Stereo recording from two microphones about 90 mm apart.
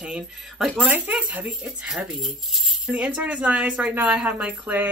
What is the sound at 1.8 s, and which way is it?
Speech, 5° right (ahead or behind).